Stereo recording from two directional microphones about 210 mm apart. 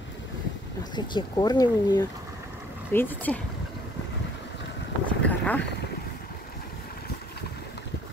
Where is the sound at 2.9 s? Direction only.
10° left (ahead or behind).